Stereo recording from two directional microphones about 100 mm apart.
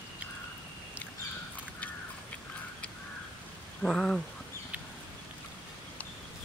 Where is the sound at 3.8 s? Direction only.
5° left (ahead or behind).